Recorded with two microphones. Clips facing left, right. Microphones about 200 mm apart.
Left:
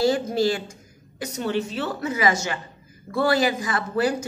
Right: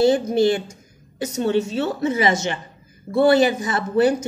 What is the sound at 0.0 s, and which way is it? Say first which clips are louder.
A woman's voice: right 5 dB; 20° right (ahead or behind).